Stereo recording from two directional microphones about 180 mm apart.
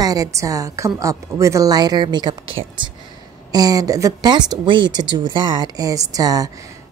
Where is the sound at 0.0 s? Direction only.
20° right (ahead or behind).